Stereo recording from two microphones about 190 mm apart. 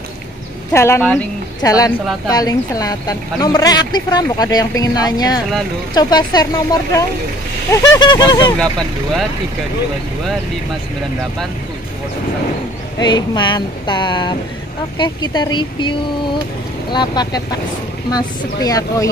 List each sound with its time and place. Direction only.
0.7 s a woman's voice: 15° left (ahead or behind)
13.0 s a woman's voice: 25° left (ahead or behind)